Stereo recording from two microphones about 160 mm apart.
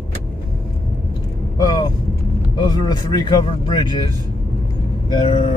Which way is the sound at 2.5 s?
25° left (ahead or behind).